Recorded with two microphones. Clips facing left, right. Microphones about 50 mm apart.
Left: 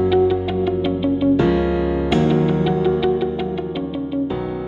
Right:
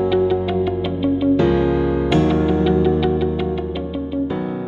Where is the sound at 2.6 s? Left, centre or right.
Centre.